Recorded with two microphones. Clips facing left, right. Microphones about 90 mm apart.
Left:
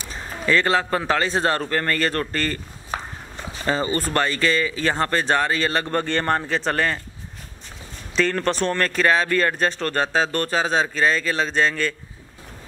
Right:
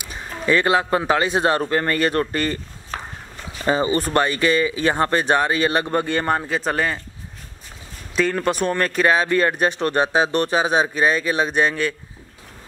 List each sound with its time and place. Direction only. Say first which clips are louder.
0.0 s speech: right 1 dB; 15° right (ahead or behind)
2.9 s a sound: left 2 dB; 15° left (ahead or behind)
3.6 s speech: right 3 dB; 15° right (ahead or behind)
8.2 s speech: right 1 dB; 10° right (ahead or behind)